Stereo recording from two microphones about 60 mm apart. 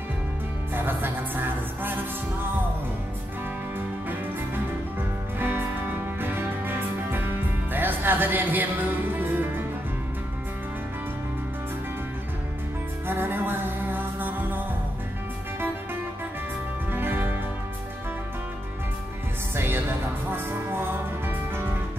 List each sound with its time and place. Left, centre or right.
0.7 s music: right
5.4 s music: right
13.0 s music: right
16.9 s music: right
19.5 s music: right